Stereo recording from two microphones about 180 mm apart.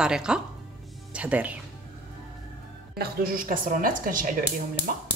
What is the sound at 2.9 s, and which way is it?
A woman's voice, 55° right (ahead or behind).